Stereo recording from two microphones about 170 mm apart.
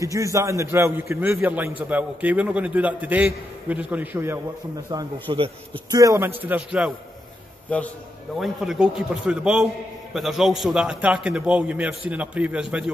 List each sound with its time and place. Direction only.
0.0 s a man's voice: 20° right (ahead or behind)
5.3 s speech: 30° right (ahead or behind)
5.9 s a man's voice: 20° right (ahead or behind)
8.4 s a man's voice: centre (ahead or behind)